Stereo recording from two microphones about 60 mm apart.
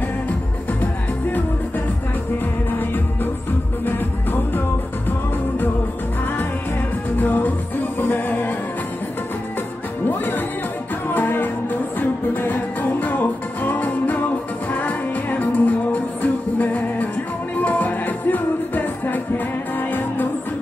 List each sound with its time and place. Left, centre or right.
7.2 s music: left
10.0 s music: left